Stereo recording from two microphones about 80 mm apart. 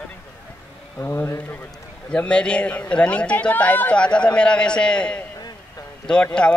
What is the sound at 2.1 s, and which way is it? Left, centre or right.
A man's voice, centre.